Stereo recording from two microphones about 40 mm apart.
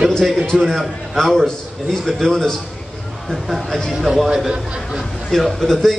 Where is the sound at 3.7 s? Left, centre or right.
Centre.